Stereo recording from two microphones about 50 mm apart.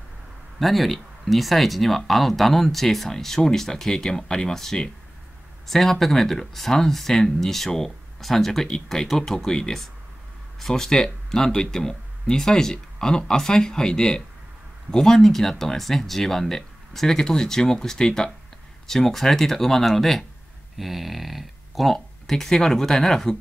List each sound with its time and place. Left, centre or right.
0.6 s speech: centre